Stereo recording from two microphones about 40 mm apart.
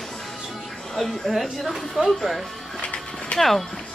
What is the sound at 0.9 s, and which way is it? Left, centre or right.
Speech, centre.